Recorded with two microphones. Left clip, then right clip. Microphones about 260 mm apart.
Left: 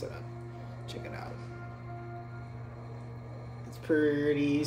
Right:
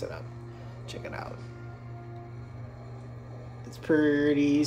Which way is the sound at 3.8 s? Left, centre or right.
Right.